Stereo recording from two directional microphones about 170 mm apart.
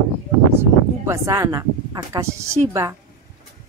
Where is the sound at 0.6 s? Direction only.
15° right (ahead or behind).